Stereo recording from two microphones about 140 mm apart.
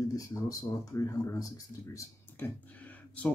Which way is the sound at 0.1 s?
25° left (ahead or behind).